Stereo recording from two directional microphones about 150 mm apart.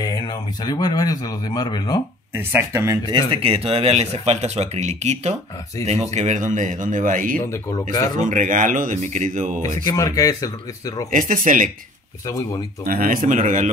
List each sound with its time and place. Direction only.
0.0 s a man's voice: 25° left (ahead or behind)
2.3 s speech: 15° right (ahead or behind)
3.1 s speech: 40° right (ahead or behind); by 9.6 s 60° right (ahead or behind)
9.8 s speech: 25° left (ahead or behind)
11.1 s speech: 60° right (ahead or behind)
12.3 s speech: 25° left (ahead or behind)
12.8 s speech: 70° right (ahead or behind)